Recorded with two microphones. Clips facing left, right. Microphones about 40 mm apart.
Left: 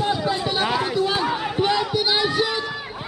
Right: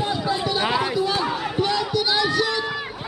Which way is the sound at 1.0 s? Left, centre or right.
Centre.